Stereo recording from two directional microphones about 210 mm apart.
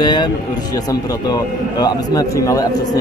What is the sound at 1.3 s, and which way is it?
A man's voice, 20° left (ahead or behind).